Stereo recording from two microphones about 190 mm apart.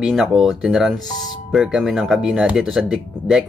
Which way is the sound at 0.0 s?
5° right (ahead or behind).